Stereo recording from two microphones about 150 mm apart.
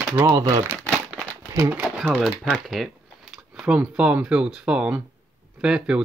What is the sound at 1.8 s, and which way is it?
Speech, 5° right (ahead or behind).